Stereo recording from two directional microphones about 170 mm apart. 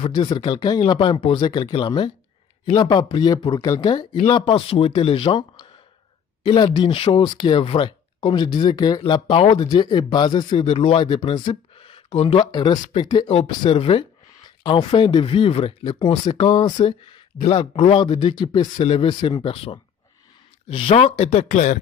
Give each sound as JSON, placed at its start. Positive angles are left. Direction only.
{"t": 0.0, "sound": "speech", "side_deg": 25}